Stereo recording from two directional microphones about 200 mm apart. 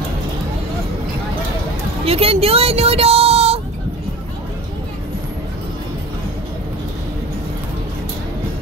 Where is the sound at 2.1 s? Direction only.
30° right (ahead or behind).